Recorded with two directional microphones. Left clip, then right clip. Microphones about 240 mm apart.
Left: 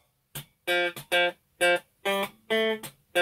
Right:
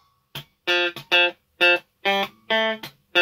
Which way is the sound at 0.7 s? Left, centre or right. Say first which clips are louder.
Right 5 dB; right.